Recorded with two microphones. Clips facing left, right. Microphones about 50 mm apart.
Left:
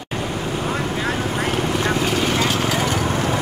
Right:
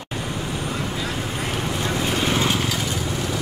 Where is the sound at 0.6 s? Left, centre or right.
Left.